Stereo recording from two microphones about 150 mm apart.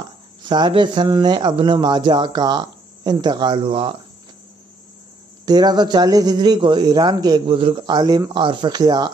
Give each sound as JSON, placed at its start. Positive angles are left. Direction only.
{"t": 0.4, "sound": "speech", "side_deg": -30}
{"t": 5.4, "sound": "speech", "side_deg": -25}